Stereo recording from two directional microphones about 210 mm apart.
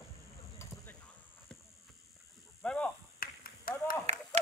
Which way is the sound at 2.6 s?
5° left (ahead or behind).